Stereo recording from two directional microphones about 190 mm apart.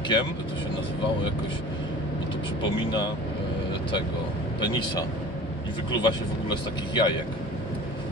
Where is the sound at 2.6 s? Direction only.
25° left (ahead or behind).